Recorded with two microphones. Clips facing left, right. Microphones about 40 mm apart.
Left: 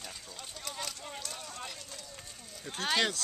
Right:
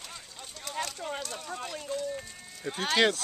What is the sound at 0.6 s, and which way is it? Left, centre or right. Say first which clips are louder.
Speech: right 6 dB; centre.